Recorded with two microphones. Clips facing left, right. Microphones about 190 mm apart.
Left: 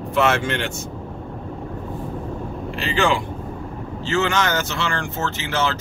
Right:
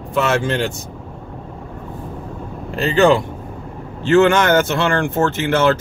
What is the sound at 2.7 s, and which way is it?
Speech, 40° right (ahead or behind).